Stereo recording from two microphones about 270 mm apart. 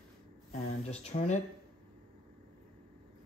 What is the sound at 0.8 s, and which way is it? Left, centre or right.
Speech, left.